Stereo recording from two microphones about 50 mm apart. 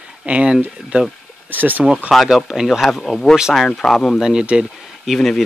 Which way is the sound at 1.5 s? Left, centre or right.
Right.